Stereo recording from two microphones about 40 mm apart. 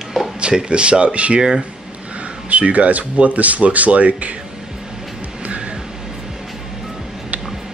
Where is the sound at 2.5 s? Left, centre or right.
Right.